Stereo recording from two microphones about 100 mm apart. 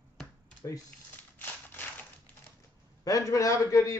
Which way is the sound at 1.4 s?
20° left (ahead or behind).